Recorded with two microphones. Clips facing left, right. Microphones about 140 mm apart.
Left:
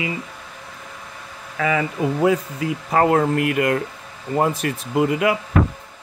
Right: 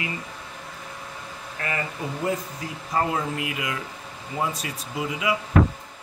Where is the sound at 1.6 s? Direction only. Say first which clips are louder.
Left 10 dB; 90° left.